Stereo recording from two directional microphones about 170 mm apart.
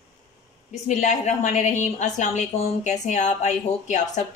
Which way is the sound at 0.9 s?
45° left (ahead or behind).